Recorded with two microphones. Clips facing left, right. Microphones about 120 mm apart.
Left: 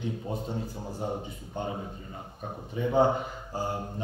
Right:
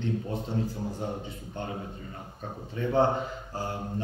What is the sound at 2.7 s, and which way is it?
A man's voice, 15° left (ahead or behind).